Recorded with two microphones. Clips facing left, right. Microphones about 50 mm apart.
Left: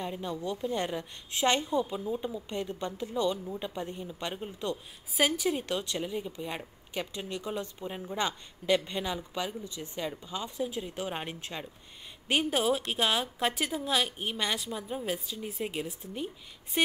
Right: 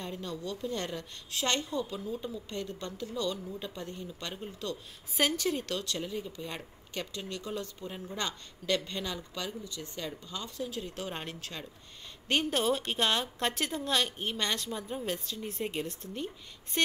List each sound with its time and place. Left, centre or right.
0.0 s a woman's voice: centre
5.1 s a woman's voice: centre